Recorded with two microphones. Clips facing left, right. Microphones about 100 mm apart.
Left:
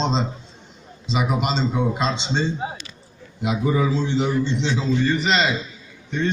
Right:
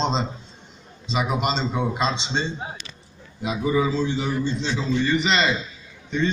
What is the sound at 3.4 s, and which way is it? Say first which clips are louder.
A man's voice: left 1 dB; 65° left (ahead or behind).